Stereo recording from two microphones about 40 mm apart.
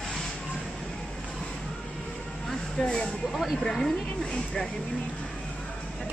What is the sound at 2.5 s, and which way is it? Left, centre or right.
Music, centre.